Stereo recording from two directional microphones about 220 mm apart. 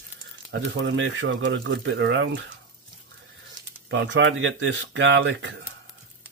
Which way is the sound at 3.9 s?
55° right (ahead or behind).